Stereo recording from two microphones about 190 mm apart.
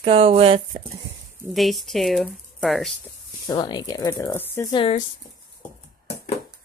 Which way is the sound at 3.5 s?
20° left (ahead or behind).